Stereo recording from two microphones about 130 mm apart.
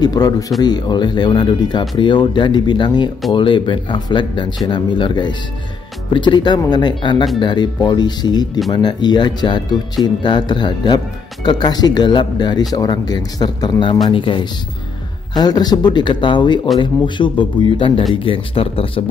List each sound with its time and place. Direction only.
0.0 s speech: 30° left (ahead or behind)